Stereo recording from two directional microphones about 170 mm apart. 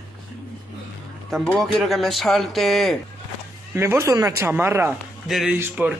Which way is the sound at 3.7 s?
15° right (ahead or behind).